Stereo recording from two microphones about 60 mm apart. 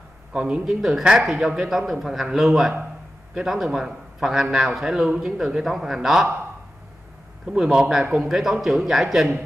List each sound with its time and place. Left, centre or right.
0.3 s a man's voice: centre
7.4 s a man's voice: centre
8.2 s a man's voice: centre